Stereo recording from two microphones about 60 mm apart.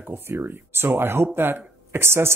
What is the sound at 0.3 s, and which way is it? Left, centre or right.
Speech, right.